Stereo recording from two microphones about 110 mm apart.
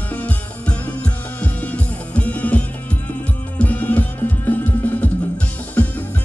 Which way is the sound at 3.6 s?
15° left (ahead or behind).